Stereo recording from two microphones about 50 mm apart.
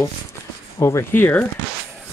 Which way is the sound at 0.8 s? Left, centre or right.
Left.